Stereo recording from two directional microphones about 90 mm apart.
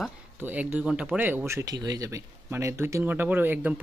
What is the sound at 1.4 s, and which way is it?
Speech, 30° right (ahead or behind).